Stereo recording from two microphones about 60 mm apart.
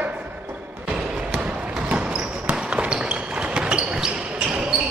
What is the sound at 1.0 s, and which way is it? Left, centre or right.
Basketball bounce, centre.